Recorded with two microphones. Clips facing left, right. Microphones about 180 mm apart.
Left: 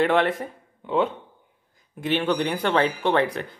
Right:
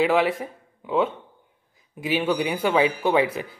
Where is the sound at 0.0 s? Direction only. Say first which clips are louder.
Even; centre (ahead or behind).